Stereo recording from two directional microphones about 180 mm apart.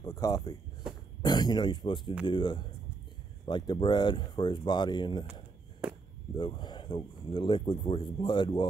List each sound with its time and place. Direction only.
0.0 s speech: 20° left (ahead or behind)
0.8 s a sound: 5° right (ahead or behind)
1.2 s speech: 25° left (ahead or behind)
5.2 s chop: 10° right (ahead or behind)
6.3 s speech: 25° left (ahead or behind)